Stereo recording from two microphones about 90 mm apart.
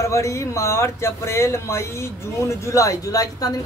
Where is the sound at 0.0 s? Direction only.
35° left (ahead or behind).